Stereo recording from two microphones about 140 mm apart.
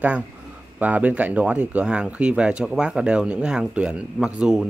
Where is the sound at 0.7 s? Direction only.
10° right (ahead or behind).